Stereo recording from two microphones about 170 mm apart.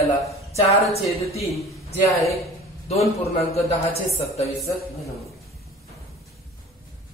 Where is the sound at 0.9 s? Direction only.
35° left (ahead or behind).